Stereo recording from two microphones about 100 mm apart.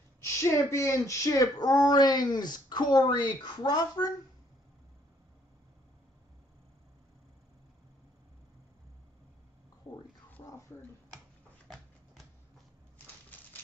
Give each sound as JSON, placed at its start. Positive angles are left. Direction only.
{"t": 0.4, "sound": "speech", "side_deg": 30}
{"t": 11.7, "sound": "shuffling cards", "side_deg": 5}
{"t": 13.3, "sound": "typewriter", "side_deg": 15}